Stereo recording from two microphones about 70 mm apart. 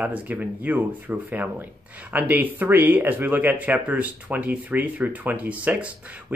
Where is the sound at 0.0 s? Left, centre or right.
Right.